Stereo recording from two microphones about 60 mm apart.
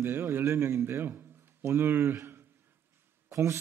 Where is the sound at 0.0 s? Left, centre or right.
Right.